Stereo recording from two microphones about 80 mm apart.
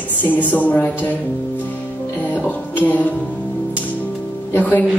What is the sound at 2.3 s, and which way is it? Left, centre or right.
Music, left.